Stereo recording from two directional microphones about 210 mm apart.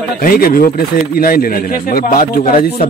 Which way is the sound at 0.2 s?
45° left (ahead or behind).